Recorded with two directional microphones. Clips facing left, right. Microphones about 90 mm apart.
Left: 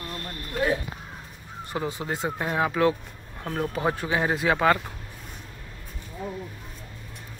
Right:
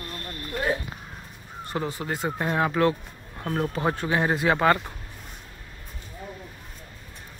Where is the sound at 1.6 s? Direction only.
15° left (ahead or behind).